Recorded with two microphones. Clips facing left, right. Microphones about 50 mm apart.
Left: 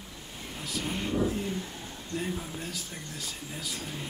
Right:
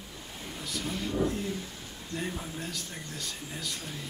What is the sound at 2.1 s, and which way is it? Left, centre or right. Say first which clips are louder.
Speech: left 1 dB; centre.